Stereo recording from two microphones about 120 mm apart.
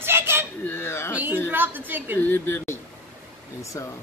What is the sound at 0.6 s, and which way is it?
Speech, 20° left (ahead or behind).